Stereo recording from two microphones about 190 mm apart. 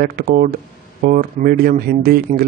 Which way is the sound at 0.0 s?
50° right (ahead or behind).